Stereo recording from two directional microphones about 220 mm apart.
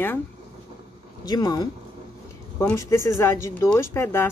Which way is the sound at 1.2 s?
15° left (ahead or behind).